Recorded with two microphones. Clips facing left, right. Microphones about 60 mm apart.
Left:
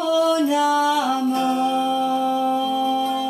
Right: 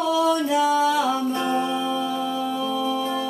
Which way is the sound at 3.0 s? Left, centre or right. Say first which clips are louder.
Left 3 dB; right.